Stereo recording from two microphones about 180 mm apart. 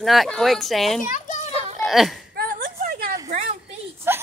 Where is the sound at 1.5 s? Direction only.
35° right (ahead or behind).